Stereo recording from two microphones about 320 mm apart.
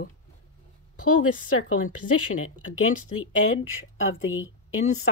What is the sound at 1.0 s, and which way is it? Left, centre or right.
Speech, left.